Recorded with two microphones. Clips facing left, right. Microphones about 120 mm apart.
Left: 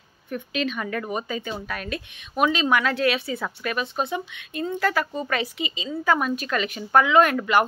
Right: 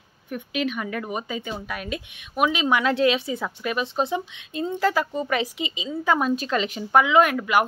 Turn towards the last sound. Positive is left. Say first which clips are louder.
# even
turn(degrees=-15)  # may be behind; listen again after turning